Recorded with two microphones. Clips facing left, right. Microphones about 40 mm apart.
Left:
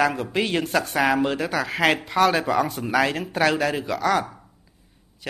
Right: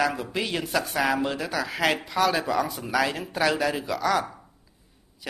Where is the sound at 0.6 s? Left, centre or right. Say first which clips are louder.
Left 3 dB; centre.